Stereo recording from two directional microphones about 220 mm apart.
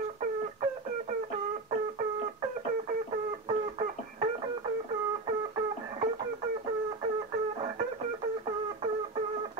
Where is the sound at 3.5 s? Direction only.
30° right (ahead or behind).